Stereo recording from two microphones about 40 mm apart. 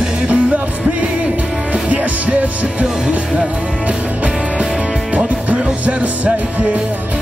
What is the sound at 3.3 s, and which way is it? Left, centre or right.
Music, right.